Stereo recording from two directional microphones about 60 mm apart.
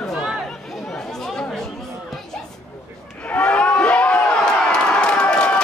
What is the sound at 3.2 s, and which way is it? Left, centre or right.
Crowd, left.